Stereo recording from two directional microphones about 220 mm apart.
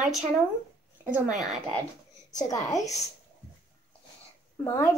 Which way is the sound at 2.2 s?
15° left (ahead or behind).